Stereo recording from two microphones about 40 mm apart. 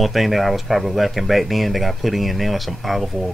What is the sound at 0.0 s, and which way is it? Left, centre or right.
Speech, centre.